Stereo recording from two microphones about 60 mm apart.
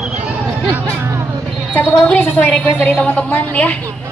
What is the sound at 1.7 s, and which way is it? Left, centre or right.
A woman's voice, left.